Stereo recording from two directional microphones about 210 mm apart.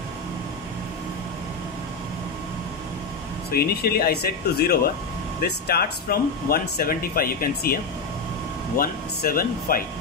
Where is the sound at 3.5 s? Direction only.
45° left (ahead or behind).